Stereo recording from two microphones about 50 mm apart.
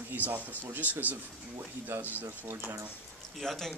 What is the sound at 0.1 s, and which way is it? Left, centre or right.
Speech, right.